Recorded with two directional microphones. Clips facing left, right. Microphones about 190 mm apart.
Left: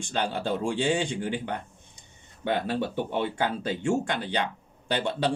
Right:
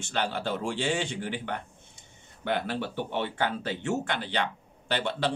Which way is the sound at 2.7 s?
15° left (ahead or behind).